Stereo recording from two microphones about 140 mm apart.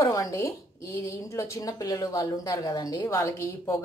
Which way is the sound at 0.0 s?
25° left (ahead or behind).